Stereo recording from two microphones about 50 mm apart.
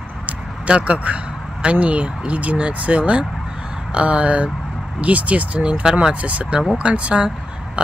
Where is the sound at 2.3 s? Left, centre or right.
Right.